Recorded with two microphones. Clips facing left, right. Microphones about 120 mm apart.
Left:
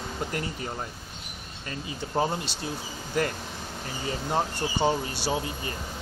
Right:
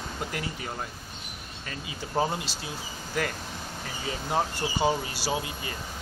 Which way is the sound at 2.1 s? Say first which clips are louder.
Even; centre (ahead or behind).